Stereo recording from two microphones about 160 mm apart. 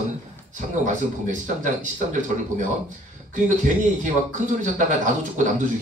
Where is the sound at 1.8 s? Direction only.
50° right (ahead or behind).